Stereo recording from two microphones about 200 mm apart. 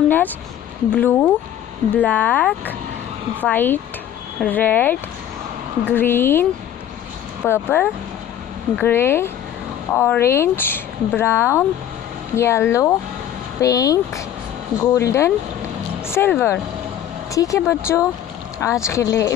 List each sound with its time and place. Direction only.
0.9 s speech: 5° left (ahead or behind)
5.9 s speech: 10° left (ahead or behind)
7.4 s speech: 10° left (ahead or behind)